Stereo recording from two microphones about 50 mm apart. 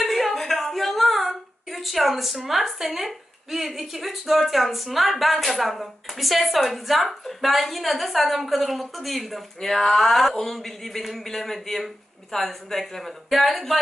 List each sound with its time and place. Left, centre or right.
0.0 s a woman's voice: centre